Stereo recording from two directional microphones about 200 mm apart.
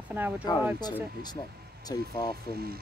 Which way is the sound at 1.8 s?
20° left (ahead or behind).